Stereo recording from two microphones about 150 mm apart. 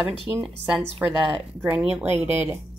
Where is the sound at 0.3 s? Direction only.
20° right (ahead or behind).